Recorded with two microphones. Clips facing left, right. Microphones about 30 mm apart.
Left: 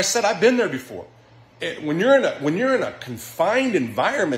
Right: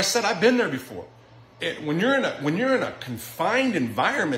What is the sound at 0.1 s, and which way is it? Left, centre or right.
Speech, centre.